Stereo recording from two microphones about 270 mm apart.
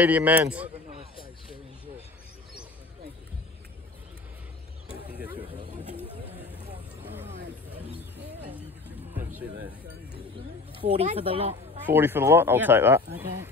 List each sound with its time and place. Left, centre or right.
0.0 s a man's voice: centre
10.8 s speech: centre
11.8 s speech: centre